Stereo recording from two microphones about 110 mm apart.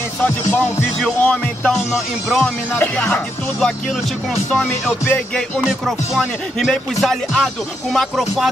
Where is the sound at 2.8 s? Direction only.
15° left (ahead or behind).